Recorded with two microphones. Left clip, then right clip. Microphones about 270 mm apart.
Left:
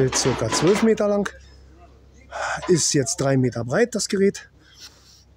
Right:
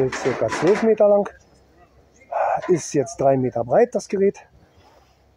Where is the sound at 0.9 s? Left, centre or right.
Centre.